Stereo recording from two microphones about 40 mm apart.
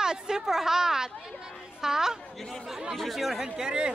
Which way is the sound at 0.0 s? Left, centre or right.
Centre.